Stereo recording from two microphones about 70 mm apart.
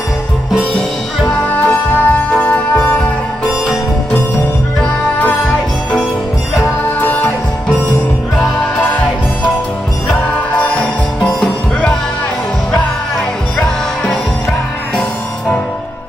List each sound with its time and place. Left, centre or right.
1.5 s music: left
6.6 s music: left
10.6 s music: centre